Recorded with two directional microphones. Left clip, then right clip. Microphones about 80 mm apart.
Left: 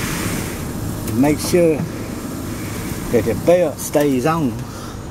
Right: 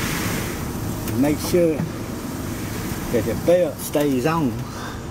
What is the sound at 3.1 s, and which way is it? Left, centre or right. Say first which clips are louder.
Speech: left 4 dB; centre.